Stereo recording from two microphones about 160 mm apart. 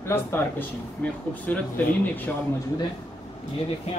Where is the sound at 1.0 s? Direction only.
10° left (ahead or behind).